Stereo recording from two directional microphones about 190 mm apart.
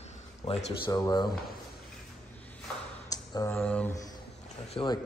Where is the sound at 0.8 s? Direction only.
20° left (ahead or behind).